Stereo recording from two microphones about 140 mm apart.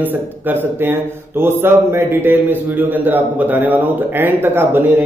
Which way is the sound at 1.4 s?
15° right (ahead or behind).